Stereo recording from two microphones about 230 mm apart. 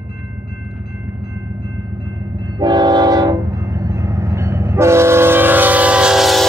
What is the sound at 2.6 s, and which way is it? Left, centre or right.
Train, centre.